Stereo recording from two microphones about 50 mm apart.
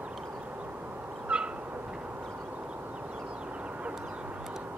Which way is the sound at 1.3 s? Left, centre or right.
Right.